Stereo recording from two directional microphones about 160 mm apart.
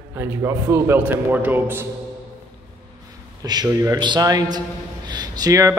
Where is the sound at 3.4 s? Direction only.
25° right (ahead or behind).